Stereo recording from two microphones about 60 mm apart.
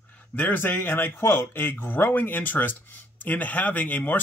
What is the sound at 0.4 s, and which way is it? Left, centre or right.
Speech, left.